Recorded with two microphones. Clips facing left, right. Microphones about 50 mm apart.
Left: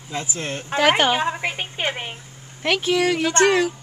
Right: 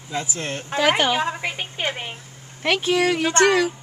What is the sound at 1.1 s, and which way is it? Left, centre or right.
A woman's voice, centre.